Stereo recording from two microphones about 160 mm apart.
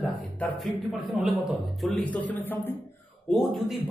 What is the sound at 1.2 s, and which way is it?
Speech, centre (ahead or behind).